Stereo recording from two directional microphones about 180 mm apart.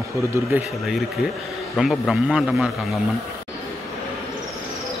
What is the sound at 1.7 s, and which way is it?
Speech, centre (ahead or behind).